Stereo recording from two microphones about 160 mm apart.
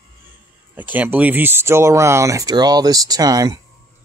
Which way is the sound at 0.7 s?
10° right (ahead or behind).